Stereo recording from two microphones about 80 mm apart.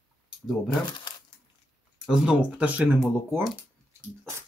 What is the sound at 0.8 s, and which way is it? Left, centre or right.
Speech, left.